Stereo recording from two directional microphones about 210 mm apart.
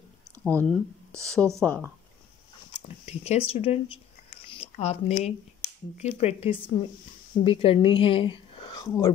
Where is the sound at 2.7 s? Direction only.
30° left (ahead or behind).